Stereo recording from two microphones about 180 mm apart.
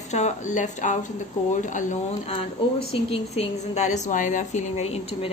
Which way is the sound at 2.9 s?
35° left (ahead or behind).